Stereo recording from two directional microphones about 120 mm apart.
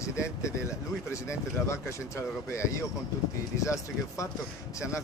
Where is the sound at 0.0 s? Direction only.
25° left (ahead or behind).